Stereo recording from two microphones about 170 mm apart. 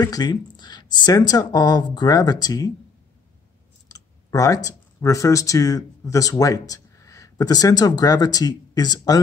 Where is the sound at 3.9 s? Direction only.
20° left (ahead or behind).